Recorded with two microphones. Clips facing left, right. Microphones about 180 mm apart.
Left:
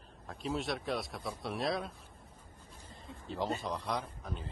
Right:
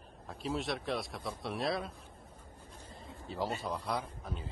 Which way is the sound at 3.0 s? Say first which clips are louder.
Even; centre (ahead or behind).